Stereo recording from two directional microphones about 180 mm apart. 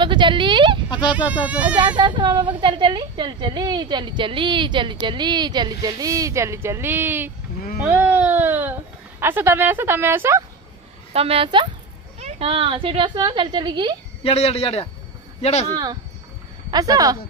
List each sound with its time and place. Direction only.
0.0 s a sound: 25° right (ahead or behind)
0.8 s a sound: 25° left (ahead or behind)
1.1 s a woman's voice: 10° right (ahead or behind)
2.0 s a woman's voice: 25° right (ahead or behind)
11.1 s a woman's voice: 35° right (ahead or behind)
14.2 s speech: 35° left (ahead or behind)
16.7 s a woman's voice: 20° right (ahead or behind)